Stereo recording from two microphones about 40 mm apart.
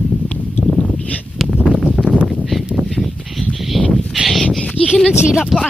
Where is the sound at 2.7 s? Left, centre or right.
Centre.